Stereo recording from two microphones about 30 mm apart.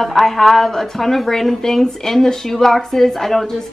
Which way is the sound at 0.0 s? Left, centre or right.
Centre.